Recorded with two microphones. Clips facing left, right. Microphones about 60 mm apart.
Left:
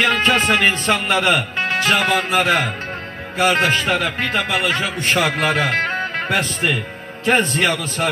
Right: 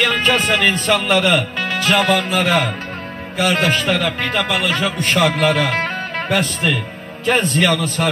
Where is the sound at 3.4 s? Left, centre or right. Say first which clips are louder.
Left 1 dB; left.